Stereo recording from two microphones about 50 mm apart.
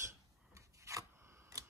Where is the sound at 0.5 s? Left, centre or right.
Right.